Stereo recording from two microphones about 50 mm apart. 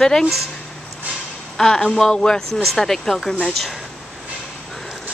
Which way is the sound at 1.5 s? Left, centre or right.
Centre.